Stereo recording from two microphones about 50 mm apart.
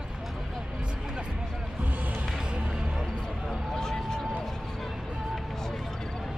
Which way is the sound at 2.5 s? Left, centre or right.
Centre.